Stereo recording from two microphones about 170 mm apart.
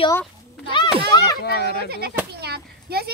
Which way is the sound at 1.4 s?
70° left (ahead or behind).